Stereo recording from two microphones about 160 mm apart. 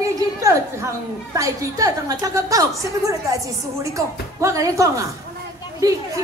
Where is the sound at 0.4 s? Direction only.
20° right (ahead or behind).